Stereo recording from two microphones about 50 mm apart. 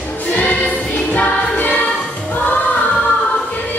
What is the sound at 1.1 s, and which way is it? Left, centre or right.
Music, left.